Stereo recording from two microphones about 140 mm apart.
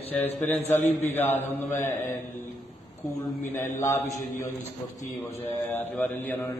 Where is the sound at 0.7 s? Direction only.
15° left (ahead or behind).